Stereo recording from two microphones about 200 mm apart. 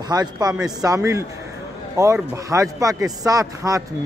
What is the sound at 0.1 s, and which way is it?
A man's voice, 20° right (ahead or behind).